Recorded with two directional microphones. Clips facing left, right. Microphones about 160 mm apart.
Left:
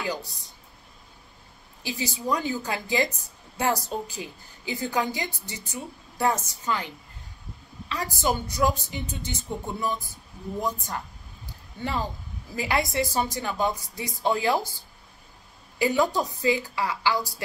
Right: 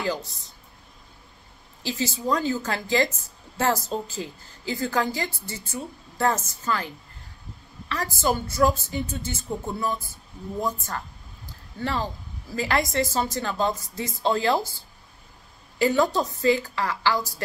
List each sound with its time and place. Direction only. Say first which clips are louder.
0.0 s a woman's voice: right 3 dB; 15° left (ahead or behind)
1.8 s a woman's voice: right 3 dB; 15° left (ahead or behind)
7.9 s a woman's voice: right 2 dB; 15° left (ahead or behind)
15.8 s a woman's voice: right 2 dB; 15° left (ahead or behind)